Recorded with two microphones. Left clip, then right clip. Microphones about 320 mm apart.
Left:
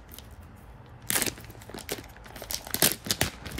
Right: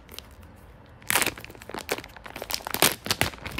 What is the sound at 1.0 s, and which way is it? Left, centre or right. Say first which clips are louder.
Crumpling: right 6 dB; centre.